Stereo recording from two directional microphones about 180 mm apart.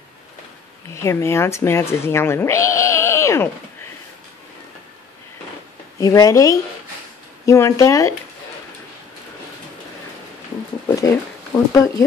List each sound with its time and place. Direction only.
0.9 s speech: 15° left (ahead or behind)
5.9 s speech: 20° left (ahead or behind)
11.0 s speech: 20° left (ahead or behind)